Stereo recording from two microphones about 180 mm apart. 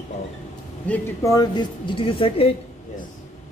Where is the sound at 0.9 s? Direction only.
20° left (ahead or behind).